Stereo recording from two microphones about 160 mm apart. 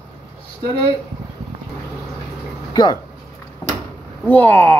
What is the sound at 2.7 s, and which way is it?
Speech, 25° left (ahead or behind).